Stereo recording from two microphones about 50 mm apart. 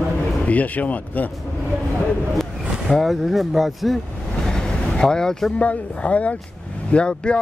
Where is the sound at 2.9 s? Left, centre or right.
Centre.